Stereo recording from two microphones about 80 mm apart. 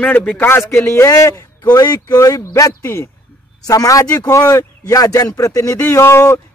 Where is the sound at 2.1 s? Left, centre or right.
Left.